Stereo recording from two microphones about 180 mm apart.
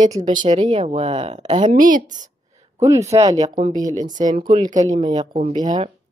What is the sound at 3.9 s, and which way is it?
Speech, 20° right (ahead or behind).